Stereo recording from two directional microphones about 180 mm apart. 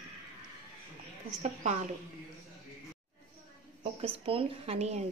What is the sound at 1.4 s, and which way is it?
Speech, 40° right (ahead or behind).